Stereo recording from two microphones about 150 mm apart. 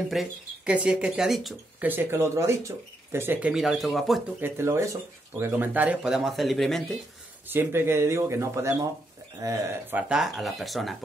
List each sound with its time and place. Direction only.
0.1 s speech: 5° right (ahead or behind)
1.9 s speech: 15° right (ahead or behind)
3.5 s speech: centre (ahead or behind)
4.4 s speech: 15° right (ahead or behind); by 7.0 s centre (ahead or behind)
7.4 s speech: 15° right (ahead or behind)
9.9 s speech: 5° right (ahead or behind)